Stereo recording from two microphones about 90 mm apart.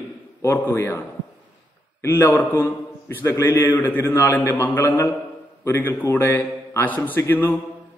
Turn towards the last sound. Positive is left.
turn(degrees=20)  # may be behind; listen again after turning